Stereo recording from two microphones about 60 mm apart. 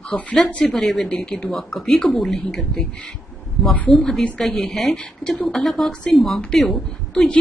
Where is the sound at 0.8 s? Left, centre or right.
Centre.